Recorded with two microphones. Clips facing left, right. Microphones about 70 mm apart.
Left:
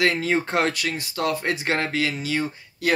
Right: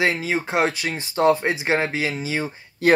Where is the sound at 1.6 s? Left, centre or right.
Centre.